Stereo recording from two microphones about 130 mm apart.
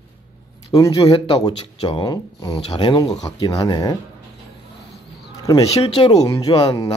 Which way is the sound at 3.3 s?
25° left (ahead or behind).